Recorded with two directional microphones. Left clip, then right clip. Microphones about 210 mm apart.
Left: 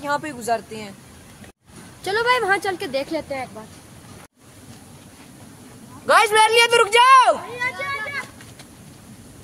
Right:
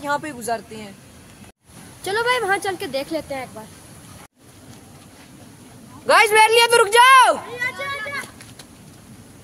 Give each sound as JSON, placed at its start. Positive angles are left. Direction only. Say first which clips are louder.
{"t": 0.0, "sound": "speech", "louder": "even", "side_deg": 0}
{"t": 2.0, "sound": "speech", "louder": "left 1 dB", "side_deg": 0}
{"t": 6.0, "sound": "a woman's voice", "louder": "right 1 dB", "side_deg": -20}
{"t": 7.5, "sound": "children playing", "louder": "even", "side_deg": -10}